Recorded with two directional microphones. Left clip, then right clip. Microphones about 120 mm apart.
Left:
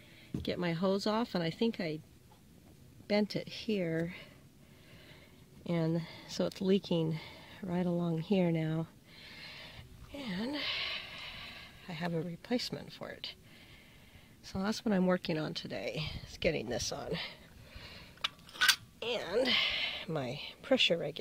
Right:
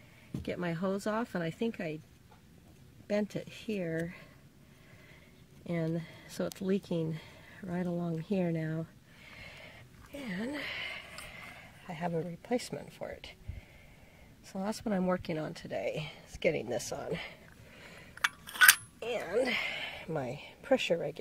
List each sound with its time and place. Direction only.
0.5 s speech: 20° left (ahead or behind)
3.1 s speech: 20° left (ahead or behind)
5.7 s speech: 25° left (ahead or behind)
7.9 s speech: 15° left (ahead or behind)
10.1 s a sound: 15° left (ahead or behind)
11.9 s speech: 25° left (ahead or behind)
14.5 s speech: 30° left (ahead or behind)
15.7 s speech: 15° left (ahead or behind)
18.9 s a woman's voice: 20° left (ahead or behind)